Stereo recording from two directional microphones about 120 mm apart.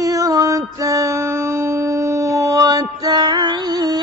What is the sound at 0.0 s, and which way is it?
Music, 30° right (ahead or behind).